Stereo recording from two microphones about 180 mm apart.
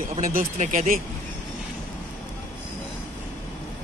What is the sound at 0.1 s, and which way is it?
Speech, 50° right (ahead or behind).